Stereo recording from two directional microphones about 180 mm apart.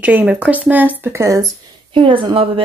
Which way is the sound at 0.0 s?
10° right (ahead or behind).